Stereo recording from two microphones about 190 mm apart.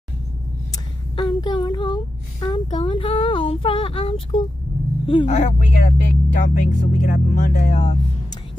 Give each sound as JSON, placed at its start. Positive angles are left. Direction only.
{"t": 1.1, "sound": "child singing", "side_deg": 25}
{"t": 2.4, "sound": "speech", "side_deg": 25}